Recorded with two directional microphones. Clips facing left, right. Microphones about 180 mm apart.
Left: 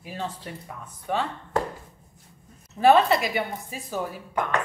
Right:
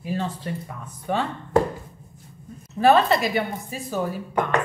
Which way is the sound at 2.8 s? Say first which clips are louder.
Right 1 dB; 15° left (ahead or behind).